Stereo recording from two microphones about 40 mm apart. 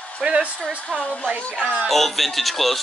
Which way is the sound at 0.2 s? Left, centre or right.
Right.